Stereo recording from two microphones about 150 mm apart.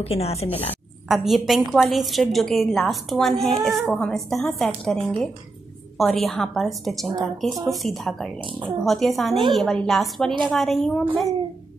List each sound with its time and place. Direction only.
0.0 s speech: 45° left (ahead or behind)
1.0 s a woman's voice: centre (ahead or behind)